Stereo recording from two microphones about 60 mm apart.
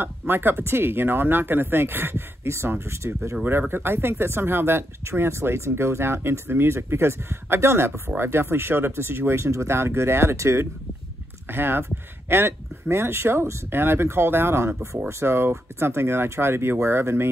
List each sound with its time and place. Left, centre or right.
0.3 s speech: right
3.4 s speech: right
11.5 s speech: right